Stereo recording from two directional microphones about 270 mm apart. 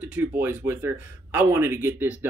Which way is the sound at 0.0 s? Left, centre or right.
Centre.